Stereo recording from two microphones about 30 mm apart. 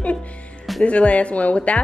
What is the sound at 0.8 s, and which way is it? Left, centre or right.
Speech, left.